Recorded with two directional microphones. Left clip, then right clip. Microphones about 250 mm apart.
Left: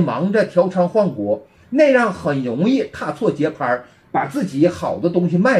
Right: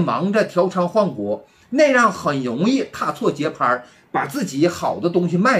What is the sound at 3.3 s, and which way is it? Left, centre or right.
Speech, centre.